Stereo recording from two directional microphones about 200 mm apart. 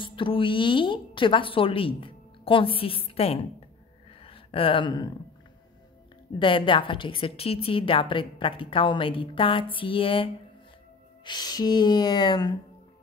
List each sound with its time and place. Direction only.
0.0 s a woman's voice: 25° left (ahead or behind)
6.4 s a woman's voice: 25° left (ahead or behind)